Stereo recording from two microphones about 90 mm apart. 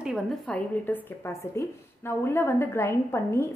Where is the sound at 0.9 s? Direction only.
20° left (ahead or behind).